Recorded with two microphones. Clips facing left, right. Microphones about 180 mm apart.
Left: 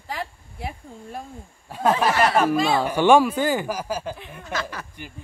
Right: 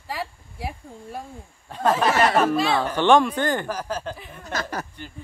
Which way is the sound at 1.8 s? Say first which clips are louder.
Even; 10° left (ahead or behind).